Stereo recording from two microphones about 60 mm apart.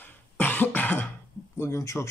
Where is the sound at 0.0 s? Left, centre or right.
Left.